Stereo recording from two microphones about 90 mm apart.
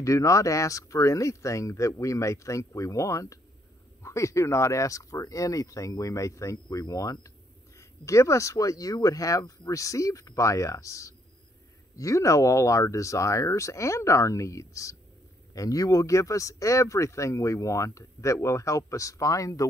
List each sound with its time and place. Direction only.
0.0 s speech: 35° left (ahead or behind)